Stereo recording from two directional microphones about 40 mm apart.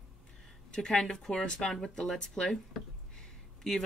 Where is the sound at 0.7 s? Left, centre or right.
Centre.